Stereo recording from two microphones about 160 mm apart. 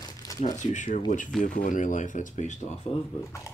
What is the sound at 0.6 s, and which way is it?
Speech, 45° left (ahead or behind).